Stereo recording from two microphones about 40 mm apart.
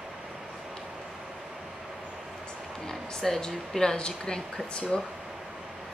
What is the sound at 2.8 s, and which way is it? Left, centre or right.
Speech, centre.